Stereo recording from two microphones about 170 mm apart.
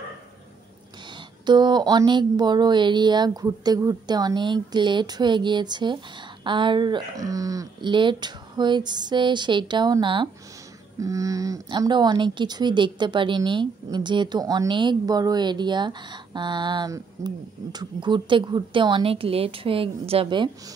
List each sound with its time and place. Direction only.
1.4 s speech: 25° right (ahead or behind)